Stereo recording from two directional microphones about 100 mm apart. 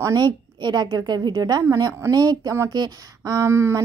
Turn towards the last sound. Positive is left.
turn(degrees=-25)  # may be behind; listen again after turning